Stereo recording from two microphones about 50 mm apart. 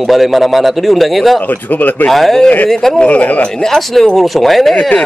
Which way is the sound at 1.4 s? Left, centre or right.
Left.